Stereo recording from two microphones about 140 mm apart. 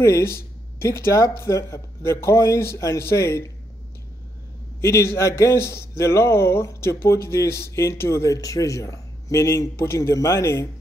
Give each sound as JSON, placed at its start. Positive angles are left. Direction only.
{"t": 0.0, "sound": "speech", "side_deg": 20}
{"t": 4.8, "sound": "speech", "side_deg": 20}